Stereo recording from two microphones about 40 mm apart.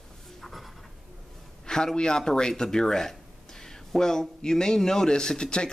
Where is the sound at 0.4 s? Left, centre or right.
Centre.